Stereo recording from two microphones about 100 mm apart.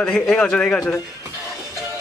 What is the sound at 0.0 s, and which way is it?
Speech, 10° left (ahead or behind).